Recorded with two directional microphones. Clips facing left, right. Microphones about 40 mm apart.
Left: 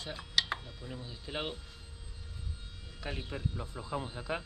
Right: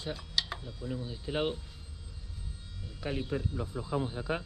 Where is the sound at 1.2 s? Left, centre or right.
Centre.